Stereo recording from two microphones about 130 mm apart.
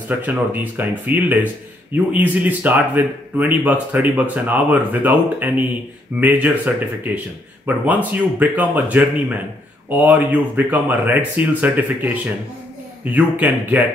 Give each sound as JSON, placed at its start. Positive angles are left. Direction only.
{"t": 0.2, "sound": "speech", "side_deg": -15}